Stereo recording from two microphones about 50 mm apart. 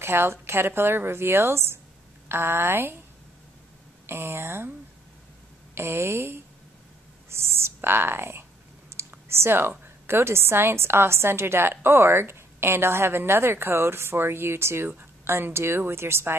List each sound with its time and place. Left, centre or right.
0.0 s a woman's voice: right
4.1 s a woman's voice: right
5.8 s a woman's voice: right
9.0 s clicking: right
9.3 s a woman's voice: right